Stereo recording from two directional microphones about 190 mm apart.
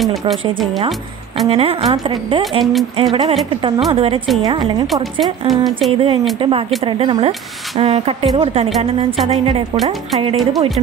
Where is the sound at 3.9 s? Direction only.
30° right (ahead or behind).